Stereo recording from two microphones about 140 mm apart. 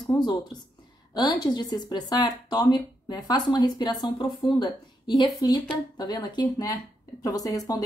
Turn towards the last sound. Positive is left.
turn(degrees=25)  # may be behind; listen again after turning